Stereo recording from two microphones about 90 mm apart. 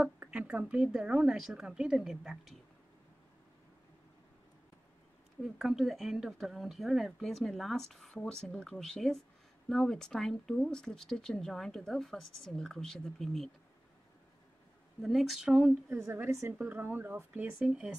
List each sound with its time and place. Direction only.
0.0 s a woman's voice: 10° right (ahead or behind)
5.4 s speech: centre (ahead or behind)
15.0 s a woman's voice: centre (ahead or behind)
15.9 s a woman's voice: 25° right (ahead or behind)
16.5 s a woman's voice: 20° right (ahead or behind)